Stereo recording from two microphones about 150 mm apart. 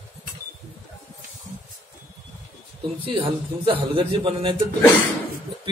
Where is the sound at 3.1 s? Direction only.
35° right (ahead or behind).